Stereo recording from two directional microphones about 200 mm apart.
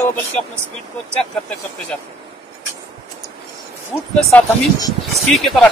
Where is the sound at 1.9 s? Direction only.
5° left (ahead or behind).